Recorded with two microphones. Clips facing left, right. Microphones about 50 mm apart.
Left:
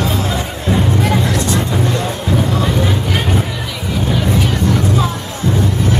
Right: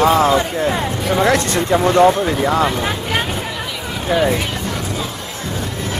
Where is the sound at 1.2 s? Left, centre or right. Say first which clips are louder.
Right 2 dB; right.